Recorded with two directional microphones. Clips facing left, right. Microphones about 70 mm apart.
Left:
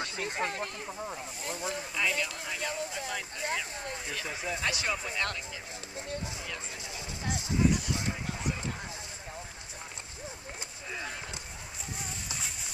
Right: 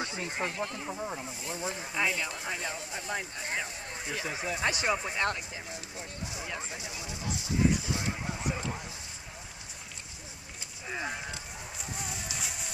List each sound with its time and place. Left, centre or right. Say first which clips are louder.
0.0 s speech: left 1 dB; centre
0.8 s speech: right 2 dB; centre
1.5 s speech: even; right
7.4 s a sound: even; right
12.1 s music: right 2 dB; centre